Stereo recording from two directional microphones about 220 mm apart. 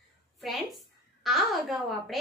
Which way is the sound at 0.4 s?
Centre (ahead or behind).